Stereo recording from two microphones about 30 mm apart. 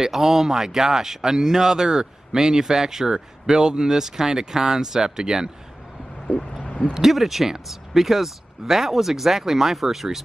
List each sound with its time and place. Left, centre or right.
0.0 s speech: centre
6.9 s speech: centre